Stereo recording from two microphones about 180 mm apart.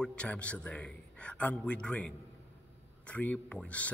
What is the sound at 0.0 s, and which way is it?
A man's voice, 5° left (ahead or behind).